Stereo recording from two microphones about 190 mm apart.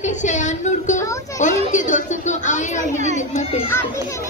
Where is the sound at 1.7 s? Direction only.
40° left (ahead or behind).